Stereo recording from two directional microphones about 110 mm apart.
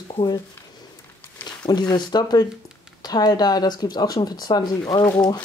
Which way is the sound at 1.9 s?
40° left (ahead or behind).